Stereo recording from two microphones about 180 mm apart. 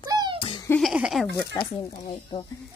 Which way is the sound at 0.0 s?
20° right (ahead or behind).